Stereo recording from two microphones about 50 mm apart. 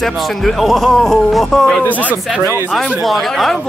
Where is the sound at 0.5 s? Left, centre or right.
Centre.